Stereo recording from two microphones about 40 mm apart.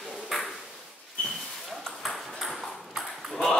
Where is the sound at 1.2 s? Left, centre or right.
Left.